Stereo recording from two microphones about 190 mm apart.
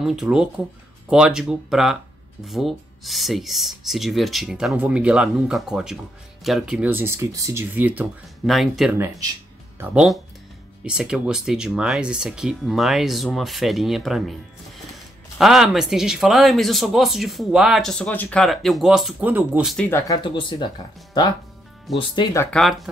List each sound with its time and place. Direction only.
0.0 s speech: centre (ahead or behind)
15.3 s speech: centre (ahead or behind)
19.9 s speech: 15° left (ahead or behind)
20.2 s speech: 25° left (ahead or behind)
21.9 s speech: 25° left (ahead or behind)
22.5 s speech: centre (ahead or behind)